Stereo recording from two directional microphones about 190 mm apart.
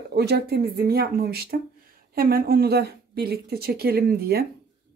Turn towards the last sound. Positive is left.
turn(degrees=-55)  # may be behind; listen again after turning